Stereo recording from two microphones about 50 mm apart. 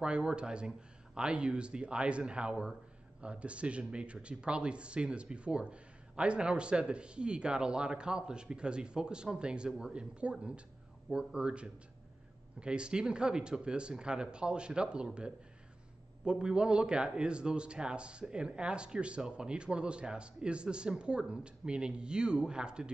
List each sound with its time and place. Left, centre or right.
0.0 s speech: centre